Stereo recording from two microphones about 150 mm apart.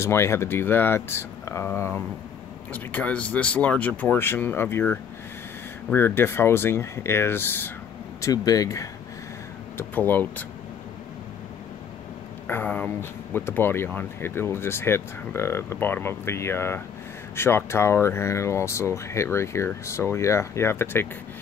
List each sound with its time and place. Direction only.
0.0 s speech: 20° left (ahead or behind)
9.8 s speech: 10° left (ahead or behind)
12.4 s speech: 10° left (ahead or behind)